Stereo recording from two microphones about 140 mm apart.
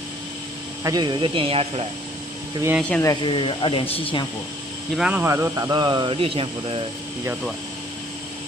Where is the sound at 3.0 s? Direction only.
30° left (ahead or behind).